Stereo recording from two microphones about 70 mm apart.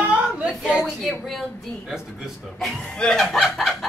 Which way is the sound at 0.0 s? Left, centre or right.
Centre.